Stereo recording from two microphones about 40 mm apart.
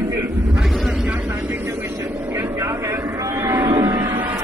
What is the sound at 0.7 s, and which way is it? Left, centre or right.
Vehicle, centre.